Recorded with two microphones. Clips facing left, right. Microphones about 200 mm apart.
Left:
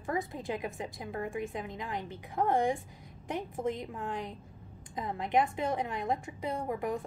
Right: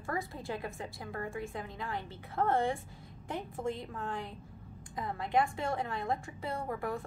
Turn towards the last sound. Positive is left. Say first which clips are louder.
# left 3 dB
turn(degrees=15)  # may be behind; listen again after turning